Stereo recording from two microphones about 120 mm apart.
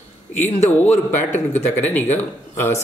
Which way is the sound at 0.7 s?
15° left (ahead or behind).